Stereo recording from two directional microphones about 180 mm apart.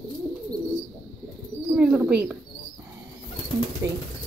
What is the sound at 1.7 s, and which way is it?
Speech, 10° right (ahead or behind).